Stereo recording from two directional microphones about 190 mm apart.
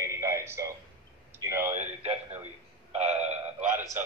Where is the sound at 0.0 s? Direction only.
15° right (ahead or behind).